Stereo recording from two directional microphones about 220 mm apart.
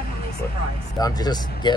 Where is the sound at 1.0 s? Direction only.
15° left (ahead or behind).